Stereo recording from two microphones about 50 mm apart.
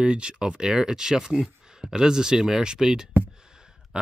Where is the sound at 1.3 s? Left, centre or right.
Centre.